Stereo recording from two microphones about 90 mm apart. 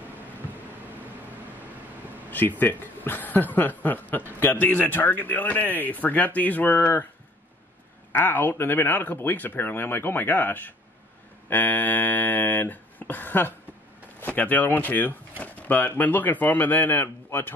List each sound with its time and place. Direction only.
2.6 s speech: 20° left (ahead or behind)
8.1 s speech: 20° left (ahead or behind)